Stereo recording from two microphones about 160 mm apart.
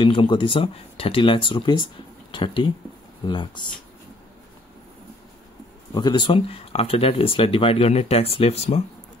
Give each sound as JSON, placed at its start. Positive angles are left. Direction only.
{"t": 0.0, "sound": "speech", "side_deg": 30}
{"t": 5.9, "sound": "speech", "side_deg": 30}